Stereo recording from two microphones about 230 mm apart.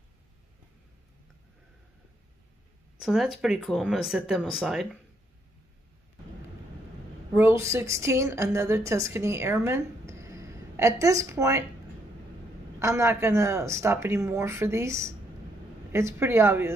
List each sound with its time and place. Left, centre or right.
3.1 s speech: centre
7.3 s a woman's voice: centre
12.7 s speech: centre